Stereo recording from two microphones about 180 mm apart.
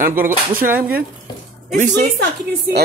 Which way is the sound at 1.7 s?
45° right (ahead or behind).